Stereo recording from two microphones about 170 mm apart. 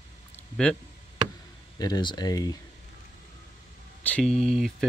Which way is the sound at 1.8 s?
25° left (ahead or behind).